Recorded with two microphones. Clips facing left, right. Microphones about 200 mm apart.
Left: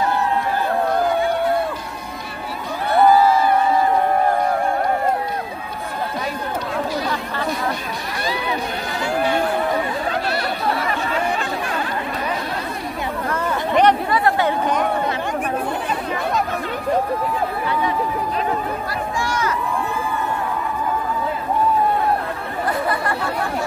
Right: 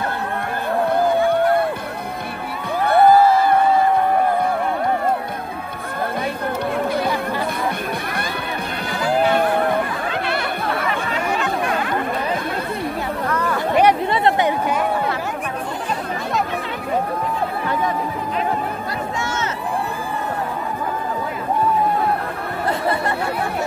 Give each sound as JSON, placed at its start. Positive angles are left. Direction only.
{"t": 0.0, "sound": "a sound", "side_deg": -55}
{"t": 2.9, "sound": "crowd", "side_deg": -55}
{"t": 13.3, "sound": "chatter", "side_deg": 25}
{"t": 14.1, "sound": "chatter", "side_deg": -25}
{"t": 19.3, "sound": "run", "side_deg": -25}